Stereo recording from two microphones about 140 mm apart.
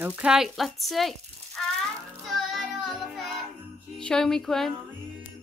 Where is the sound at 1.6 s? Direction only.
5° left (ahead or behind).